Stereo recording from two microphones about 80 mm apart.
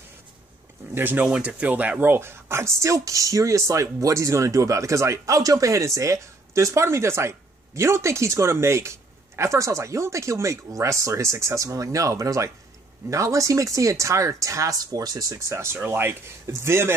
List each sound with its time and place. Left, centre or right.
0.9 s speech: right
1.2 s speech: centre; by 16.9 s right